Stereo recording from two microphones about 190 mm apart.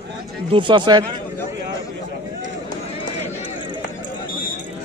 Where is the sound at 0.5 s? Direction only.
25° right (ahead or behind).